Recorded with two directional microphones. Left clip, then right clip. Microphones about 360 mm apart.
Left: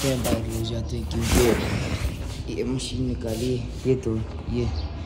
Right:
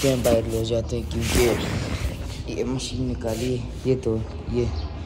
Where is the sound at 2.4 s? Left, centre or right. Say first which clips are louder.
Right 1 dB; centre.